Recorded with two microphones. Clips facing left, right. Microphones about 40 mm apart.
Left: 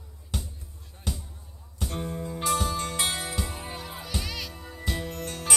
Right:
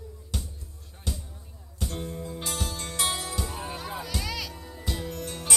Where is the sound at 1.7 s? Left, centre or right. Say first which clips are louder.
Left 2 dB; centre.